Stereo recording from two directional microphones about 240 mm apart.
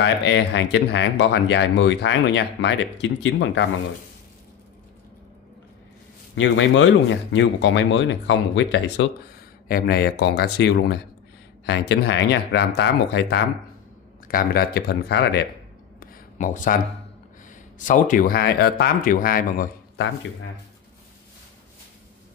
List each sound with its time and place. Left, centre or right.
0.0 s speech: left
6.3 s speech: left
16.0 s a sound: left
17.7 s speech: left